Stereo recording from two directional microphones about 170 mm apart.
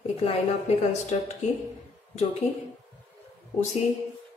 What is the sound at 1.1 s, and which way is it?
Speech, 40° left (ahead or behind).